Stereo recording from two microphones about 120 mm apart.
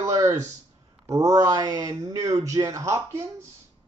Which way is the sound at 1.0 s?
30° right (ahead or behind).